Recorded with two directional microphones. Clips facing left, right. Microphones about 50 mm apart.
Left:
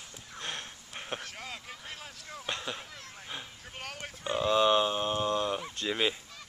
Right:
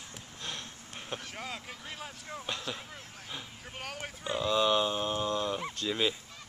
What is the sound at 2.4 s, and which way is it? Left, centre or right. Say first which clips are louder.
Speech: left 2 dB; centre.